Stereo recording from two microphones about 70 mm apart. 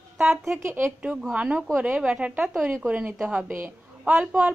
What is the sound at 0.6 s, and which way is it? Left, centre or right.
Speech, right.